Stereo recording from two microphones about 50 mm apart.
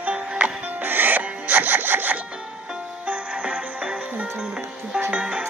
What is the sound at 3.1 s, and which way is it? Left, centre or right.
Music, right.